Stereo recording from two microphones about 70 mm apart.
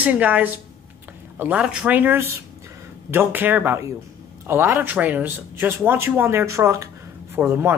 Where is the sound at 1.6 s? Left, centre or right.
Centre.